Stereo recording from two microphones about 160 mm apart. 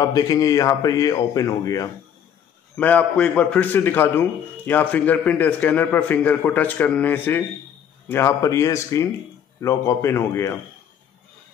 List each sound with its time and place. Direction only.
0.0 s speech: 20° left (ahead or behind)
2.8 s a man's voice: 10° left (ahead or behind)